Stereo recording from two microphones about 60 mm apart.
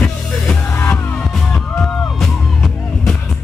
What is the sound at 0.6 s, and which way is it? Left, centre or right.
Music, left.